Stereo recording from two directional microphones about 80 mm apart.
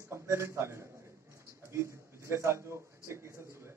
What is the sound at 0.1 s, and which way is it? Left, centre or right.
A man's voice, right.